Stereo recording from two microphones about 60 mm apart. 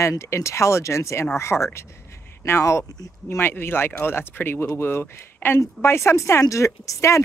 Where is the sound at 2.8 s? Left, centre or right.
Left.